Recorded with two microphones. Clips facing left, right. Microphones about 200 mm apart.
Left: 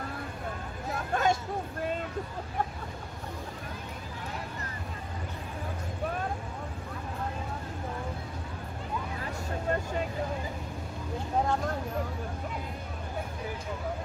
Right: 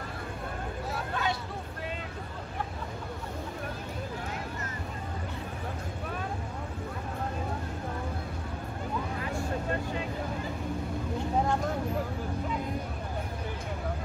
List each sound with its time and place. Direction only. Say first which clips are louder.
1.1 s vehicle: left 6 dB; 45° left (ahead or behind)